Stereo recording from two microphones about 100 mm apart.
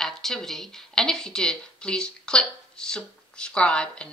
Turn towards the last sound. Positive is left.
turn(degrees=10)  # may be behind; listen again after turning